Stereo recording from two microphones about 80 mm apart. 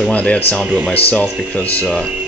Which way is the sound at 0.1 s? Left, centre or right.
Centre.